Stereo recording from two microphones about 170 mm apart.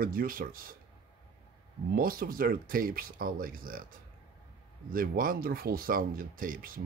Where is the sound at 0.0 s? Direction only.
60° right (ahead or behind).